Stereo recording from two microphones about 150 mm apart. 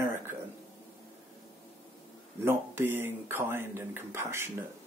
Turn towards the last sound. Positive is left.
turn(degrees=-15)  # may be behind; listen again after turning